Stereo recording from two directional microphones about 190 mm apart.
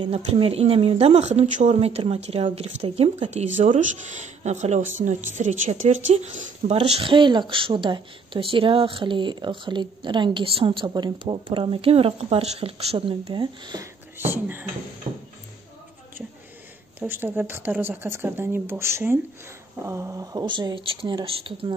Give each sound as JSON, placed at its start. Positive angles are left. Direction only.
{"t": 0.0, "sound": "speech", "side_deg": -30}
{"t": 6.8, "sound": "speech", "side_deg": -30}
{"t": 14.1, "sound": "speech", "side_deg": -10}
{"t": 15.1, "sound": "speech", "side_deg": -30}
{"t": 17.0, "sound": "speech", "side_deg": -10}